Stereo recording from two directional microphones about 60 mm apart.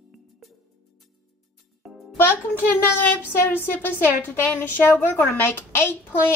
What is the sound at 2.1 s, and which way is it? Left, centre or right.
Speech, left.